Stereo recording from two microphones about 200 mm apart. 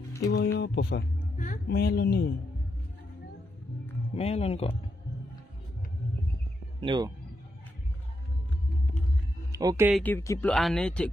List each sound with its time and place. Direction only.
0.5 s speech: 60° left (ahead or behind)
1.4 s speech: 45° left (ahead or behind)
4.1 s speech: 30° left (ahead or behind)
6.8 s speech: 25° right (ahead or behind)
9.5 s speech: 15° right (ahead or behind)
10.0 s speech: 15° left (ahead or behind)
10.5 s speech: centre (ahead or behind)